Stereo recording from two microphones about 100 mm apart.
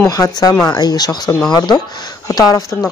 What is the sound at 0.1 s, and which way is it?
Speech, 40° left (ahead or behind).